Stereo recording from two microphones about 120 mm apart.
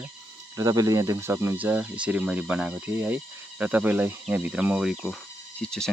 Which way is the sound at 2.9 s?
20° right (ahead or behind).